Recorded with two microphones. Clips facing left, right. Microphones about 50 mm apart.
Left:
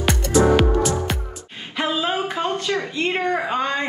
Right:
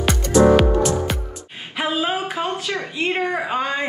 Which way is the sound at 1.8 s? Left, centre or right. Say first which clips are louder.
Even; centre.